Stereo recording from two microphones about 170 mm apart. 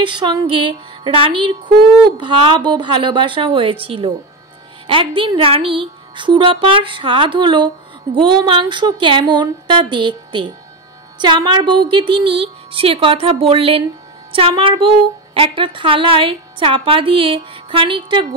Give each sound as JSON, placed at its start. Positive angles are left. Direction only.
{"t": 0.0, "sound": "a woman's voice", "side_deg": -30}